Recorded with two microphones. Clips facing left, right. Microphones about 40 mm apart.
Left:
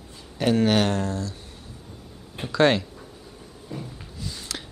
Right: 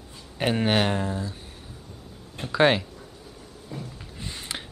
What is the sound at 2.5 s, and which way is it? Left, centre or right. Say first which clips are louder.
Speech: left 1 dB; centre.